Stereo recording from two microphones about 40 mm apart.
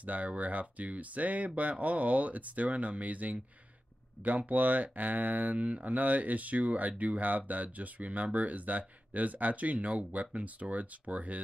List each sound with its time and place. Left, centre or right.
0.0 s speech: right
5.9 s speech: right